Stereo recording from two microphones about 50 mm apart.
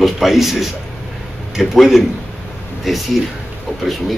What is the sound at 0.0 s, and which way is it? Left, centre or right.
A man's voice, centre.